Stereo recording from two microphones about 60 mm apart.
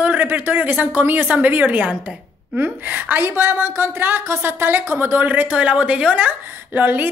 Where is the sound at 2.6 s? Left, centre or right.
Right.